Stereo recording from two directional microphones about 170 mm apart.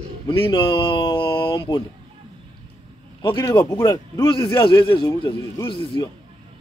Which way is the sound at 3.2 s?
25° left (ahead or behind).